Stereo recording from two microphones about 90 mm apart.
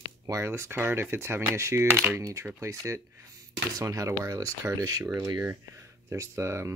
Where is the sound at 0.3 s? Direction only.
30° right (ahead or behind).